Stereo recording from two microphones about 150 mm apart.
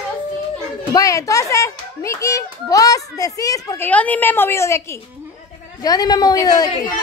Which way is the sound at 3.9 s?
10° left (ahead or behind).